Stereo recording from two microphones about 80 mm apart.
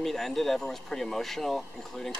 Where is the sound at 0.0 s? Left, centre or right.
Centre.